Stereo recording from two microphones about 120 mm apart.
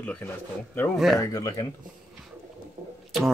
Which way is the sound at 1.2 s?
30° left (ahead or behind).